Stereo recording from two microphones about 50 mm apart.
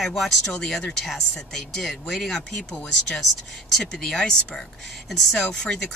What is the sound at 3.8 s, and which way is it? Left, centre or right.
Speech, centre.